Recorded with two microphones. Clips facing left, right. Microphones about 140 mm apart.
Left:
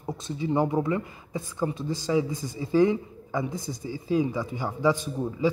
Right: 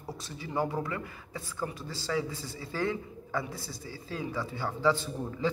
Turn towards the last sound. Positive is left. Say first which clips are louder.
# left 6 dB
turn(degrees=15)  # may be behind; listen again after turning